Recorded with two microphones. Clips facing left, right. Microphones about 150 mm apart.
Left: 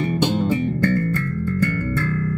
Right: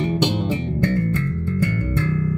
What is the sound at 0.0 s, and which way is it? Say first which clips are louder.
Music: left 1 dB; 20° right (ahead or behind).